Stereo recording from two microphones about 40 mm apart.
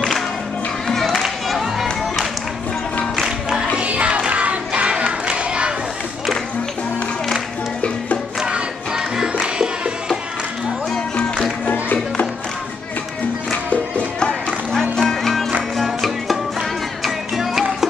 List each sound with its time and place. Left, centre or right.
0.8 s music: centre
1.6 s music: centre
3.8 s music: right
5.2 s a sound: right
8.4 s music: centre
14.2 s music: centre